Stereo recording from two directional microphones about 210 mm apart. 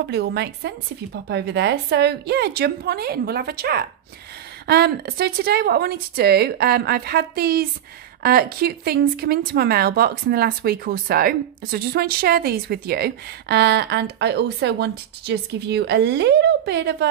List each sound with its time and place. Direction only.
0.0 s a woman's voice: 50° right (ahead or behind)